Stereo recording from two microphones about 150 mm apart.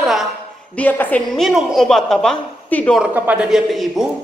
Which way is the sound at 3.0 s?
10° right (ahead or behind).